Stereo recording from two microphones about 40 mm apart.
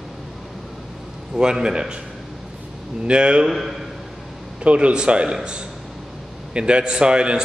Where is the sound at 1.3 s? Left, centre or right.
Right.